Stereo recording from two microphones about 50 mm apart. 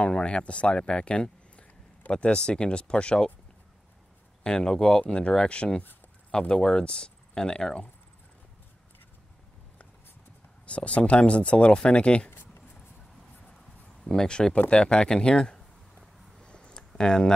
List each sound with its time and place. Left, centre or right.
0.0 s speech: left
4.4 s speech: centre
10.7 s speech: left
12.3 s a sound: left
14.0 s speech: centre
16.3 s a sound: centre